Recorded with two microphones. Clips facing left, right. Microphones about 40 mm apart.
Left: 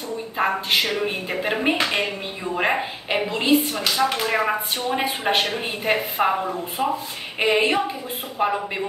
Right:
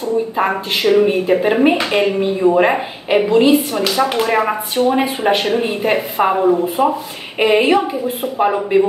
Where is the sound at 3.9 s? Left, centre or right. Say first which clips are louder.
Right 5 dB; right.